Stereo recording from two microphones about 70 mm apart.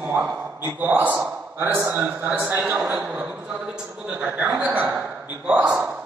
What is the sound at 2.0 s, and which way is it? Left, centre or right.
Speech, centre.